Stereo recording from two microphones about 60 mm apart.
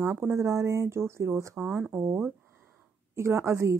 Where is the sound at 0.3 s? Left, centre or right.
Right.